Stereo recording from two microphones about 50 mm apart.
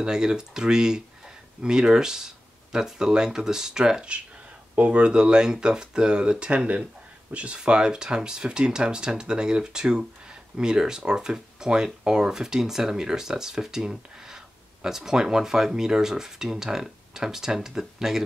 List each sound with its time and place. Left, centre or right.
0.0 s speech: centre